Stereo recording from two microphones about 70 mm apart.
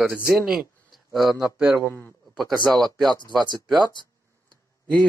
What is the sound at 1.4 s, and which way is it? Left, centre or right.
Speech, centre.